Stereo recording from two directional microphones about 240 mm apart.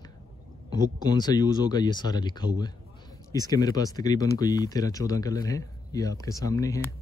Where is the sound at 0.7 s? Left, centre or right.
Centre.